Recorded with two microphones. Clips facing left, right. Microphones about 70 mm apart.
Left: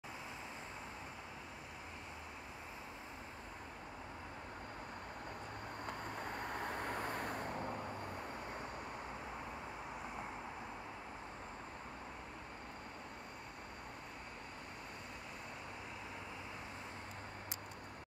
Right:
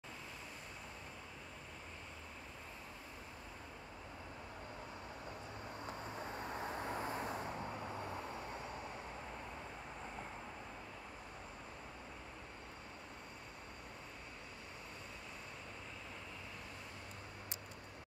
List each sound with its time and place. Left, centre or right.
5.9 s vehicle: left